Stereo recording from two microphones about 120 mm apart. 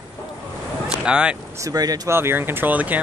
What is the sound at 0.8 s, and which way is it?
Vehicle, 5° right (ahead or behind).